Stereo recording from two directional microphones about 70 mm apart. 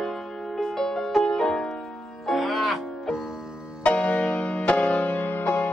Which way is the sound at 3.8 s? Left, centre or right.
Centre.